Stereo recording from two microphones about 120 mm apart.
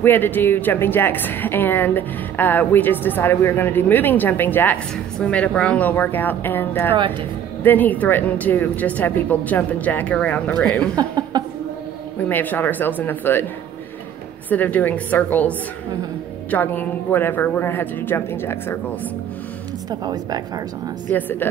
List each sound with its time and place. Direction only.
0.0 s a woman's voice: 15° left (ahead or behind)
11.0 s chuckle: 35° right (ahead or behind)
12.3 s a woman's voice: 15° left (ahead or behind)
14.5 s a woman's voice: 15° left (ahead or behind)
19.9 s speech: 35° right (ahead or behind)
21.1 s a woman's voice: 15° left (ahead or behind)